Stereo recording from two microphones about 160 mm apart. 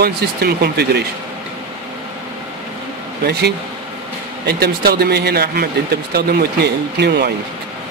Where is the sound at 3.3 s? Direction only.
90° right.